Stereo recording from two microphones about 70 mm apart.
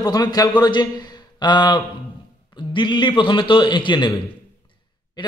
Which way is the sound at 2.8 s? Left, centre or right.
Left.